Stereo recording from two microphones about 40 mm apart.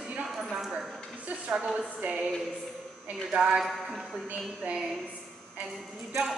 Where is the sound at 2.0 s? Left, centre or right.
Right.